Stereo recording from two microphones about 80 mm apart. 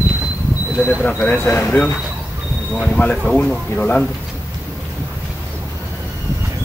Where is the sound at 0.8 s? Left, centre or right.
Left.